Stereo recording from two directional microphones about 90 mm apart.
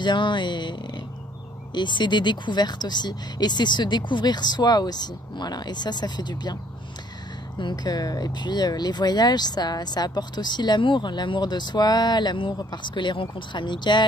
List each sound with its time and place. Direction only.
0.0 s speech: 60° left (ahead or behind)